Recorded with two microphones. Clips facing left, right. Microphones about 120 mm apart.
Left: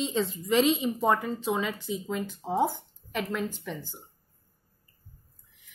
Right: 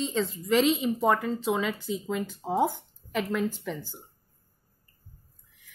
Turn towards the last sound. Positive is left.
turn(degrees=0)  # may be behind; listen again after turning